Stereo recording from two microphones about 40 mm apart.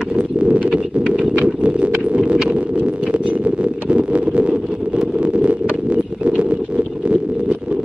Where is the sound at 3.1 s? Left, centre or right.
Right.